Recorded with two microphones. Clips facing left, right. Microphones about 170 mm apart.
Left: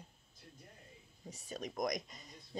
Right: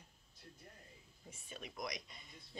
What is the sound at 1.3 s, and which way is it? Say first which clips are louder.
Speech: left 8 dB; 40° left (ahead or behind).